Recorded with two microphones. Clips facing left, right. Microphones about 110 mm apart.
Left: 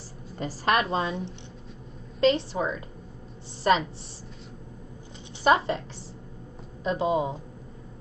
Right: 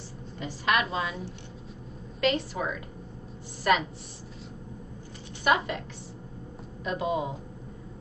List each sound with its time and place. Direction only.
0.4 s a woman's voice: 35° left (ahead or behind)
2.1 s a woman's voice: 30° left (ahead or behind)
5.4 s a woman's voice: 30° left (ahead or behind)
6.8 s a woman's voice: 30° left (ahead or behind)